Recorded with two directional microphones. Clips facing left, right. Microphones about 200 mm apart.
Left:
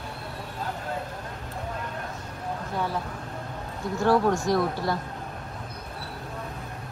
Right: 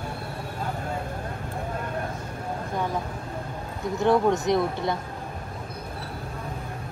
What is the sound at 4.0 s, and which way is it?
Speech, 20° right (ahead or behind).